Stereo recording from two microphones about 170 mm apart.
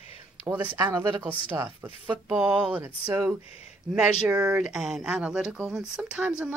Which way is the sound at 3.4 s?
35° left (ahead or behind).